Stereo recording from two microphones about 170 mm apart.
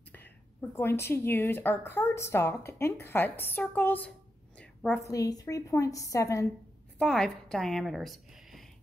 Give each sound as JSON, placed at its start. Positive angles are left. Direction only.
{"t": 0.1, "sound": "a woman's voice", "side_deg": 10}
{"t": 7.0, "sound": "a woman's voice", "side_deg": 0}